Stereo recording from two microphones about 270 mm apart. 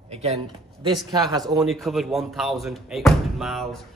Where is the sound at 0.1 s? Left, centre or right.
Right.